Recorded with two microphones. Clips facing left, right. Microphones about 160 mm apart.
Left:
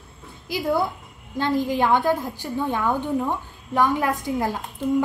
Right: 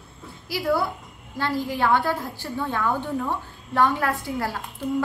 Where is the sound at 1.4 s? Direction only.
20° left (ahead or behind).